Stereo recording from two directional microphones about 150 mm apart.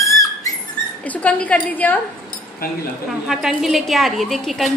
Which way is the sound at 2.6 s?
80° left.